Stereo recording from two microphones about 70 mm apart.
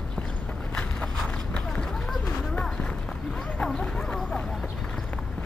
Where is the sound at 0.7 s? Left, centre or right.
Centre.